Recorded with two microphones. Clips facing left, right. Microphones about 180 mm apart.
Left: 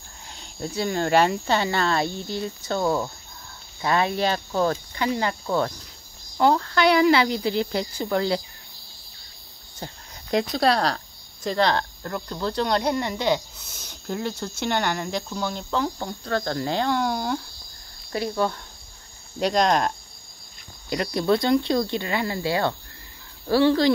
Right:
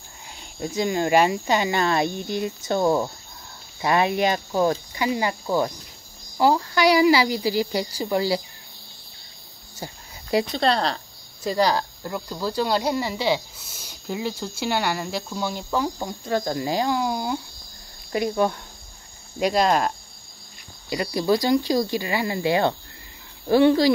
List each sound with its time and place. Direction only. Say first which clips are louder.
0.3 s speech: right 2 dB; 10° right (ahead or behind)
9.8 s speech: right 1 dB; 10° right (ahead or behind)
10.3 s speech: even; 5° left (ahead or behind)
20.9 s speech: even; 5° right (ahead or behind)